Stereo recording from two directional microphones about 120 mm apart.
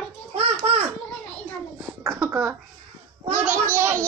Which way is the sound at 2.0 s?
20° right (ahead or behind).